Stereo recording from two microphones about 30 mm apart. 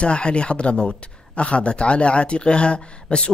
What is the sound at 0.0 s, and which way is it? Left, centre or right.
Speech, left.